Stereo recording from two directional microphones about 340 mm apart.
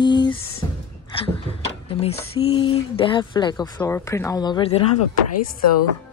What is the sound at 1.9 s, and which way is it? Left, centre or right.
Speech, centre.